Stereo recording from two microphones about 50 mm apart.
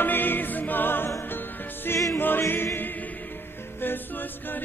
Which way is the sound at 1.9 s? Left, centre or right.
Left.